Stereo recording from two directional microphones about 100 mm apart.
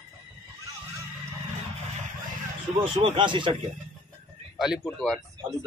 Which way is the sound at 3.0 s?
55° right (ahead or behind).